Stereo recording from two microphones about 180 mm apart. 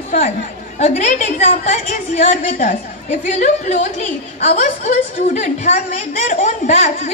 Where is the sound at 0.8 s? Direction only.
40° left (ahead or behind).